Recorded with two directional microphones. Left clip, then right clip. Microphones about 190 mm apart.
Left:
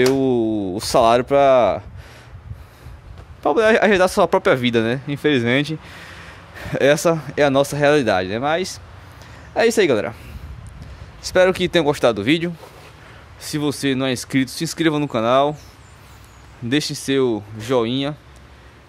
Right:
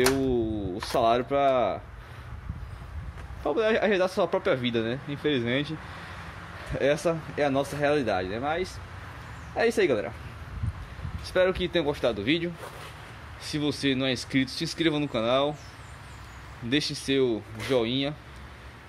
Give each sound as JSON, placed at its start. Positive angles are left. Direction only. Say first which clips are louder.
{"t": 0.1, "sound": "speech", "louder": "left 9 dB", "side_deg": 50}
{"t": 3.4, "sound": "speech", "louder": "left 10 dB", "side_deg": 55}
{"t": 11.2, "sound": "speech", "louder": "left 9 dB", "side_deg": 45}
{"t": 13.5, "sound": "speech", "louder": "left 6 dB", "side_deg": 50}
{"t": 16.6, "sound": "speech", "louder": "left 6 dB", "side_deg": 50}